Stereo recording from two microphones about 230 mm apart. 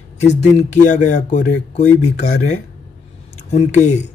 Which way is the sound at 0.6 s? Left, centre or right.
Left.